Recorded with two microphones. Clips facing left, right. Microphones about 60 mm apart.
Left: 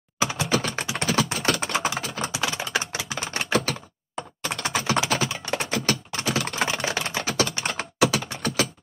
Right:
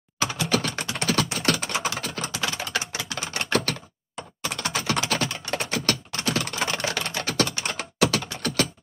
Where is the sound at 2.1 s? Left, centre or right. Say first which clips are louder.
Left 2 dB; centre.